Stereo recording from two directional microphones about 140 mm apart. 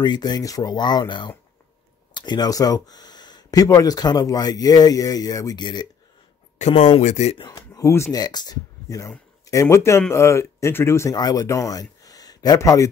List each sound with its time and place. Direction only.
0.0 s speech: 30° left (ahead or behind)
6.6 s speech: 55° left (ahead or behind)
7.3 s speech: 30° left (ahead or behind)